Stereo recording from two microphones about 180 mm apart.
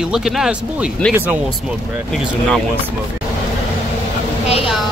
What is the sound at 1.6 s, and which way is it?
Speech, centre (ahead or behind).